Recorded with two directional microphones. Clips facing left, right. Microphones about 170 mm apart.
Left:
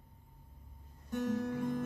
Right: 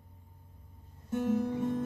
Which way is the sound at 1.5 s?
25° right (ahead or behind).